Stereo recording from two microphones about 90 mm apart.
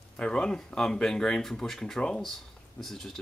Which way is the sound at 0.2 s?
10° left (ahead or behind).